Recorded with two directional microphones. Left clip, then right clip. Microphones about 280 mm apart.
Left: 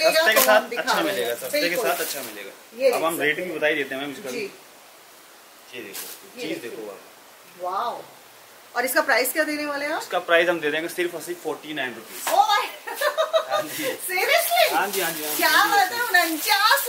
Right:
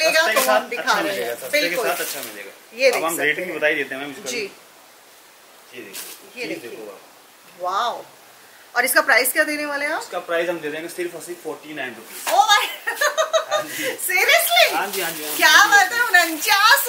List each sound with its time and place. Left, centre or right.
0.0 s a woman's voice: centre
5.8 s speech: centre
7.6 s a woman's voice: centre